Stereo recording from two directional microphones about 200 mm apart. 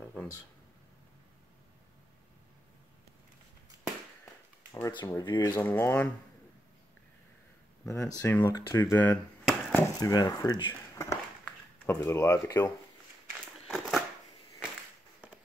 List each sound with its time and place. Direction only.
4.7 s speech: 20° left (ahead or behind)
5.6 s speech: 10° left (ahead or behind)
7.9 s speech: 10° left (ahead or behind)
9.4 s chop: centre (ahead or behind)
9.8 s speech: 20° left (ahead or behind)
13.7 s crushing: centre (ahead or behind)